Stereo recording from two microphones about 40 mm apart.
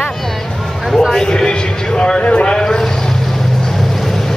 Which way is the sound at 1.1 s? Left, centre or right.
Centre.